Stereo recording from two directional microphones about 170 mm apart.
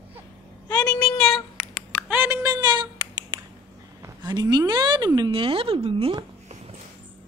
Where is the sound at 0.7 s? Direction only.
10° left (ahead or behind).